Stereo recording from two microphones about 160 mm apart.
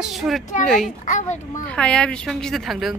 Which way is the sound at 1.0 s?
50° left (ahead or behind).